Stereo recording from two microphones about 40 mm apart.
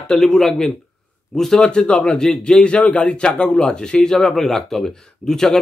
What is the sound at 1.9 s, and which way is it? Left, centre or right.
A man's voice, left.